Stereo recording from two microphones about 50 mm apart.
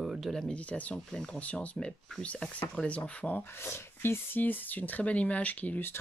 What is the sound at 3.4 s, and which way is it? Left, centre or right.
Speech, left.